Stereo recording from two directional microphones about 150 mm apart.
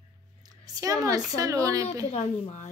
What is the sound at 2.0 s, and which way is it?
Speech, 45° left (ahead or behind).